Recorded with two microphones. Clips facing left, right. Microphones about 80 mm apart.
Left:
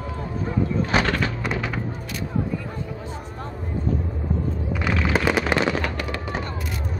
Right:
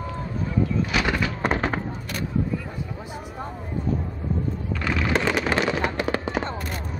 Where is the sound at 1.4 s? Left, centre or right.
Right.